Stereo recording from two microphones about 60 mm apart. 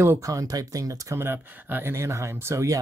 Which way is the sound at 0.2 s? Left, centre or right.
Right.